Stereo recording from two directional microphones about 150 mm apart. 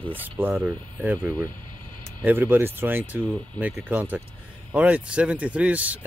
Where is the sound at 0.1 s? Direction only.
15° right (ahead or behind).